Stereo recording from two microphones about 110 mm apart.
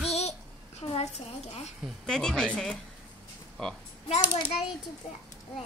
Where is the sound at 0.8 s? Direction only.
70° left (ahead or behind).